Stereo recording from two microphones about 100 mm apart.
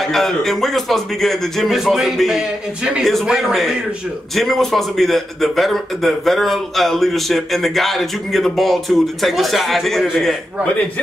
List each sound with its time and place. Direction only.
0.1 s a man's voice: 5° left (ahead or behind)